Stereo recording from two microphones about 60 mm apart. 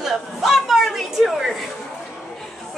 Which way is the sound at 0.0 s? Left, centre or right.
Centre.